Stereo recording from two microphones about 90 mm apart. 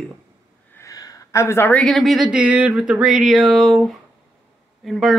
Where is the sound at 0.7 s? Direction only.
40° left (ahead or behind).